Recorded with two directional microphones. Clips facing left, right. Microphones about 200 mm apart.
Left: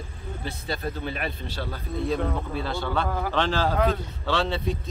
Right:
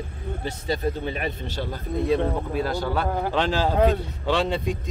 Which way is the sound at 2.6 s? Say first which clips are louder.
Right 7 dB; 40° right (ahead or behind).